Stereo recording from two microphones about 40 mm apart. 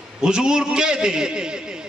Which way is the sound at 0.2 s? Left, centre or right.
Centre.